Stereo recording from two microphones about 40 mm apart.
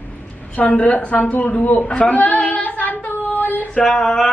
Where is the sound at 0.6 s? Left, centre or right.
Left.